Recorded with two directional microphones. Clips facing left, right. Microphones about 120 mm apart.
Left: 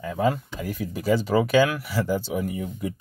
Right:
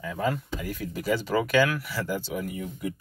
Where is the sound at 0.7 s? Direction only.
15° left (ahead or behind).